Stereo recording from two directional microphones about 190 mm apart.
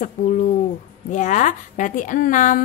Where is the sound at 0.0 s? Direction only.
40° left (ahead or behind).